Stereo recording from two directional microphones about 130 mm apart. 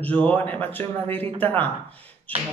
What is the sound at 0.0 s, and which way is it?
Speech, 10° left (ahead or behind).